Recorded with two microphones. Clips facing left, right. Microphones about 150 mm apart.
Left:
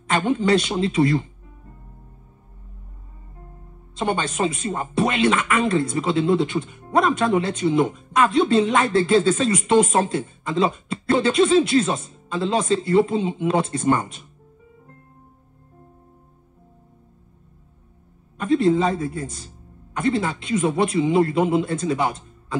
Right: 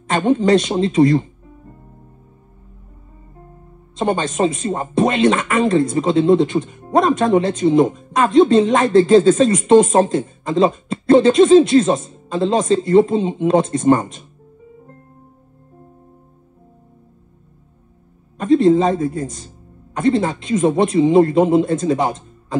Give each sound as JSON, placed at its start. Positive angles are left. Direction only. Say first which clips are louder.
{"t": 0.1, "sound": "speech", "louder": "right 5 dB", "side_deg": -35}
{"t": 4.0, "sound": "speech", "louder": "right 5 dB", "side_deg": -35}
{"t": 18.4, "sound": "speech", "louder": "right 5 dB", "side_deg": -40}